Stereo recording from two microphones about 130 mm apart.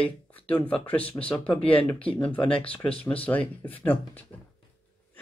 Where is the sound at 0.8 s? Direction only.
10° left (ahead or behind).